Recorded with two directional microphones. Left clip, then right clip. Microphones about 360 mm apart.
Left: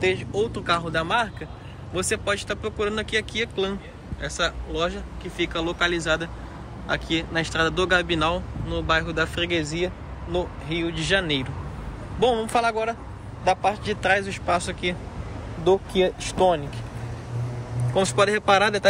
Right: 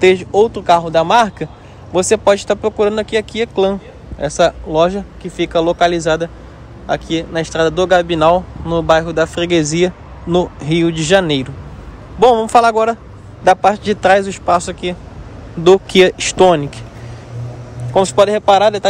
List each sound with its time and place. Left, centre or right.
0.0 s speech: centre
15.9 s speech: right
17.9 s speech: centre